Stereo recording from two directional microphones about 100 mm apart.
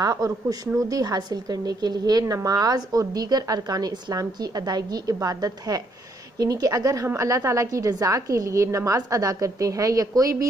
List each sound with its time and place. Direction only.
0.0 s a woman's voice: 40° right (ahead or behind)